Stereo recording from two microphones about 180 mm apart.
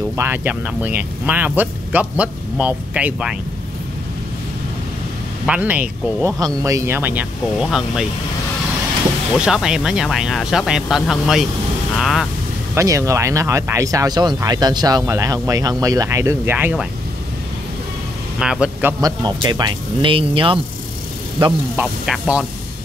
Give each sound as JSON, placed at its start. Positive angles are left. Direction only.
{"t": 0.2, "sound": "speech", "side_deg": -10}
{"t": 5.5, "sound": "speech", "side_deg": -10}
{"t": 9.4, "sound": "speech", "side_deg": -5}
{"t": 12.7, "sound": "speech", "side_deg": -15}
{"t": 18.4, "sound": "speech", "side_deg": -5}
{"t": 21.7, "sound": "speech", "side_deg": -5}